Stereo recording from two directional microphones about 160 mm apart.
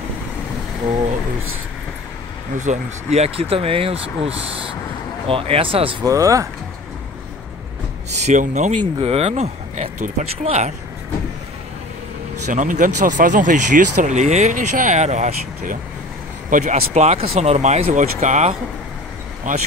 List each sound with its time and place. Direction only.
2.5 s speech: 50° right (ahead or behind)
5.3 s speech: 35° right (ahead or behind)
6.0 s speech: 20° right (ahead or behind)
8.1 s speech: 45° right (ahead or behind)
12.4 s speech: 50° right (ahead or behind)